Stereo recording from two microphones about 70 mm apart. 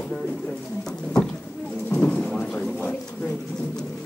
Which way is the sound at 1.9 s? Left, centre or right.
Left.